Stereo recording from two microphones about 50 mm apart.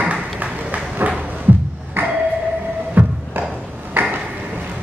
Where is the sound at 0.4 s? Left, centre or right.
Right.